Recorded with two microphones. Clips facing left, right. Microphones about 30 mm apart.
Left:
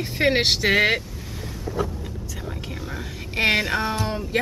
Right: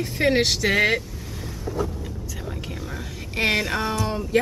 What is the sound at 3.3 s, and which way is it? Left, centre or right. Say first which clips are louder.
Speech: left 2 dB; centre.